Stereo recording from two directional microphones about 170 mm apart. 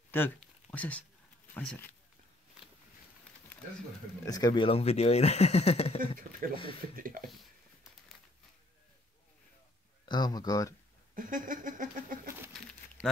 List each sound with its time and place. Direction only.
0.7 s speech: 10° left (ahead or behind)
4.2 s speech: 20° left (ahead or behind)
7.0 s speech: 55° right (ahead or behind)
10.0 s speech: 25° left (ahead or behind)
11.1 s a sound: 50° right (ahead or behind)